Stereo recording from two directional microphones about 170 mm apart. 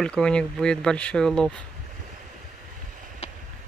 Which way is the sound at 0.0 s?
5° left (ahead or behind).